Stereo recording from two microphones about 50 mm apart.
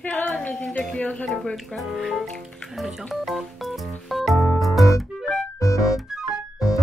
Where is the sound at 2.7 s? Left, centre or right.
Centre.